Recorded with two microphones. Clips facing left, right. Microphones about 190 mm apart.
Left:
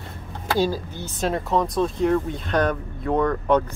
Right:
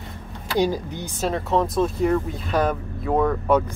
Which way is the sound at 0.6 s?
15° right (ahead or behind).